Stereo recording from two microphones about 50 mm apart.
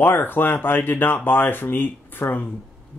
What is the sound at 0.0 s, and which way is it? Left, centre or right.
Speech, left.